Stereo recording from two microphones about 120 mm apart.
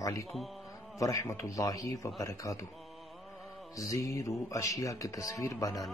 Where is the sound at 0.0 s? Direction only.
30° left (ahead or behind).